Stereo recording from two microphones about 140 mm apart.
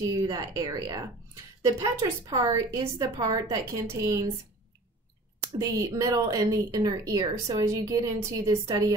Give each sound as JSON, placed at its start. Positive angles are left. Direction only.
{"t": 0.1, "sound": "a woman's voice", "side_deg": -25}
{"t": 5.6, "sound": "a woman's voice", "side_deg": -25}